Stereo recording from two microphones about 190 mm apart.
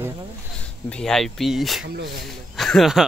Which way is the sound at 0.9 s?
Centre (ahead or behind).